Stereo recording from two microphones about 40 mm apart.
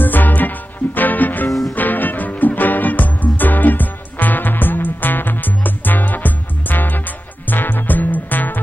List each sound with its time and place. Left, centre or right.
0.0 s music: left